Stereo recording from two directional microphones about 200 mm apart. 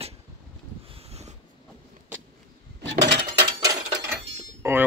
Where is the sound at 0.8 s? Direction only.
30° right (ahead or behind).